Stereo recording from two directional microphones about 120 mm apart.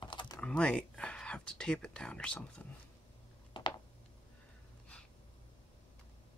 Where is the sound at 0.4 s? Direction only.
10° left (ahead or behind).